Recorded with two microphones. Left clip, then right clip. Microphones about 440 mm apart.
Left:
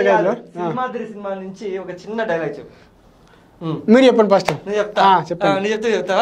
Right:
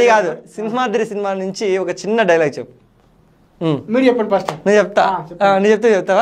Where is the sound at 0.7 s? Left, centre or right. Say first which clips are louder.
Right 7 dB; right.